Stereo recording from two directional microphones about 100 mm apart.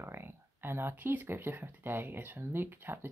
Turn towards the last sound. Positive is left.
turn(degrees=-20)  # may be behind; listen again after turning